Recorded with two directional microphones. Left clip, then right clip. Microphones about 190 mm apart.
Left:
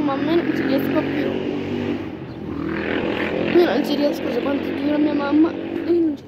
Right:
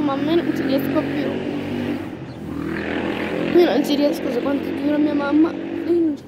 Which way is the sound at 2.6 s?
55° right (ahead or behind).